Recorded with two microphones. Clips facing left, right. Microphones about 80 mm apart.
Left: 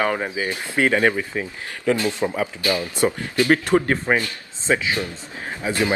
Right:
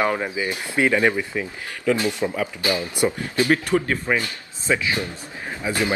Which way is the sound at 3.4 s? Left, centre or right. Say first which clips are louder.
Left 3 dB; left.